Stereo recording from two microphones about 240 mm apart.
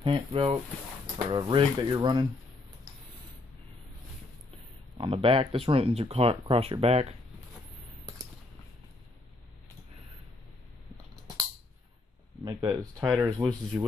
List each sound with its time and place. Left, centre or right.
0.0 s speech: right
4.9 s speech: right
12.4 s speech: centre